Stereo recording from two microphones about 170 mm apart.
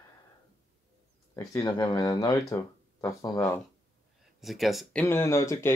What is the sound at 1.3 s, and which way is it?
Speech, 20° left (ahead or behind).